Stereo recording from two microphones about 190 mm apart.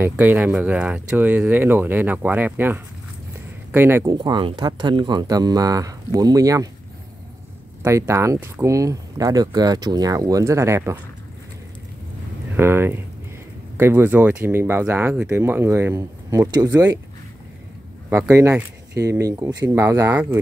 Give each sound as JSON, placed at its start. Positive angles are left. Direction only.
{"t": 0.0, "sound": "speech", "side_deg": -10}
{"t": 7.8, "sound": "speech", "side_deg": -15}
{"t": 12.5, "sound": "speech", "side_deg": -10}
{"t": 18.1, "sound": "speech", "side_deg": -15}